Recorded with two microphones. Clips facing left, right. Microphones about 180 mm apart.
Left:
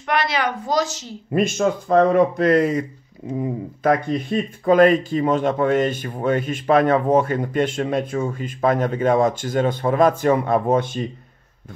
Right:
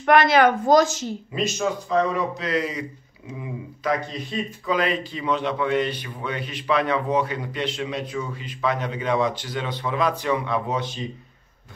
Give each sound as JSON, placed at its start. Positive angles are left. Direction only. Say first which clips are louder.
{"t": 0.0, "sound": "speech", "louder": "right 6 dB", "side_deg": -50}
{"t": 1.3, "sound": "speech", "louder": "left 7 dB", "side_deg": 55}